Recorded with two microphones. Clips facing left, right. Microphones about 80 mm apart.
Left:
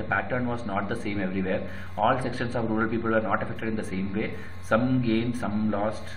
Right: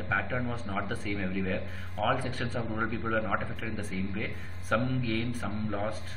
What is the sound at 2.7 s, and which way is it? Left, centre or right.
A man's voice, centre.